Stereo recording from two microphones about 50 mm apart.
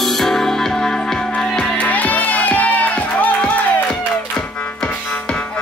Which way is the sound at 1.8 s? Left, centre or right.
Left.